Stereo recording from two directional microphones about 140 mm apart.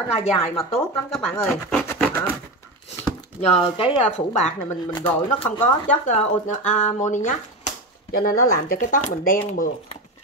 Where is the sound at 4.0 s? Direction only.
50° left (ahead or behind).